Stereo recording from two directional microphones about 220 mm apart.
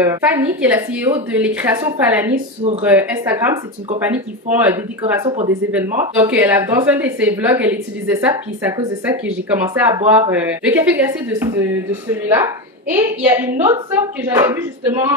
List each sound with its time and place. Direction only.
0.3 s speech: 10° right (ahead or behind)
2.3 s speech: 30° right (ahead or behind)
2.8 s speech: 5° right (ahead or behind)